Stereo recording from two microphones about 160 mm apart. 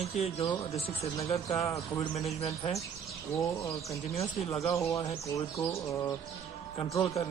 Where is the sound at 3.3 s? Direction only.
20° left (ahead or behind).